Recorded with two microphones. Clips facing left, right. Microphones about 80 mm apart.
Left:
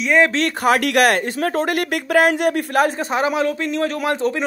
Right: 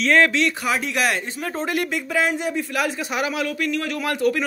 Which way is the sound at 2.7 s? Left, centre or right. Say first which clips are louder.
Left 6 dB; left.